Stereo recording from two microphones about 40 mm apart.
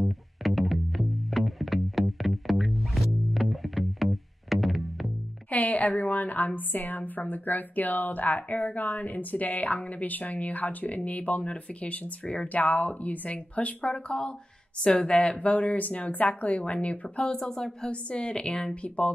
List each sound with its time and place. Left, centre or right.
0.0 s music: centre
5.5 s a woman's voice: left
13.9 s speech: left
15.5 s speech: left